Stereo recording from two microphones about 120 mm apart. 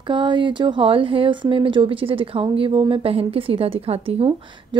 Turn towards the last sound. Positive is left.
turn(degrees=-55)  # may be behind; listen again after turning